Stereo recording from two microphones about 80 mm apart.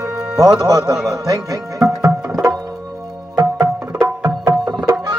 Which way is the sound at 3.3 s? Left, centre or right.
Right.